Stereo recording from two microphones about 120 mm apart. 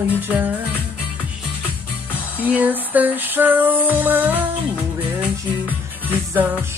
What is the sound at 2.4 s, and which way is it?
Music, 15° right (ahead or behind).